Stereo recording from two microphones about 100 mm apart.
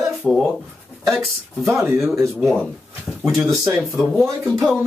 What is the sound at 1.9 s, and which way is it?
Speech, centre (ahead or behind).